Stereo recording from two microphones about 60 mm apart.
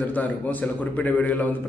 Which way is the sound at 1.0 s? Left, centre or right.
Left.